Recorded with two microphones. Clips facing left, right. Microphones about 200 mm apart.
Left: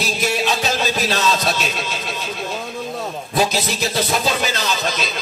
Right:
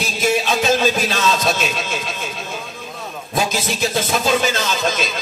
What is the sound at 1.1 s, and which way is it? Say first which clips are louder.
Speech: right 1 dB; 50° right (ahead or behind).